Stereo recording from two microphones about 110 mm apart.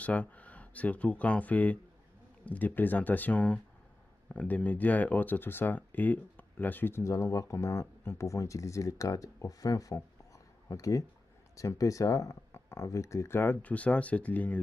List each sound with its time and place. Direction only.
0.0 s speech: 15° left (ahead or behind)